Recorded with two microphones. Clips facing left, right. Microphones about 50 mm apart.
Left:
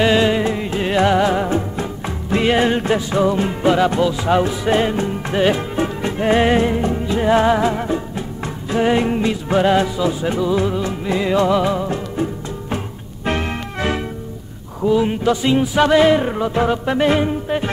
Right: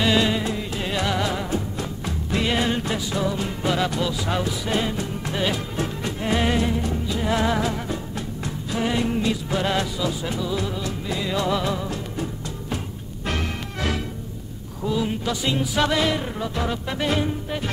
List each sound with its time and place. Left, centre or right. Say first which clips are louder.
0.0 s music: left 6 dB; left